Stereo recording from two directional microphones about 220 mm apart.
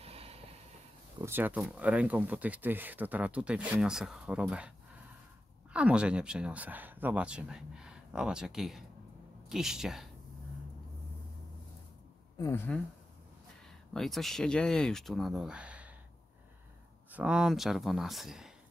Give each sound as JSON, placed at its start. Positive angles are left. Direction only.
{"t": 0.0, "sound": "vehicle", "side_deg": -25}
{"t": 1.2, "sound": "speech", "side_deg": -10}
{"t": 12.4, "sound": "a woman's voice", "side_deg": 10}
{"t": 13.9, "sound": "speech", "side_deg": 0}
{"t": 17.1, "sound": "speech", "side_deg": -5}